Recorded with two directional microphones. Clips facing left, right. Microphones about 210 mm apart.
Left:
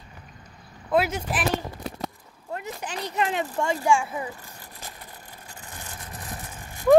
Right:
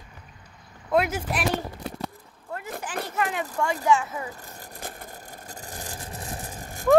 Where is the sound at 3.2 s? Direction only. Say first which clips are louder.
Left 2 dB; 25° left (ahead or behind).